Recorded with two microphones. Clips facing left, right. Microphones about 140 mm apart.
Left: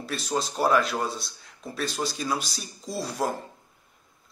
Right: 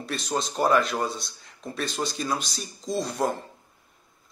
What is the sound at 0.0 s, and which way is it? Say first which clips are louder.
Speech: even; centre (ahead or behind).